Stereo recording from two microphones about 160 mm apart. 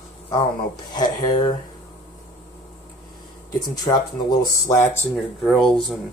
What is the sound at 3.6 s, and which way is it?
Speech, 25° left (ahead or behind).